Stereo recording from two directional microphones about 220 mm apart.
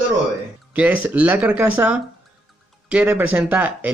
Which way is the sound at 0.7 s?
5° right (ahead or behind).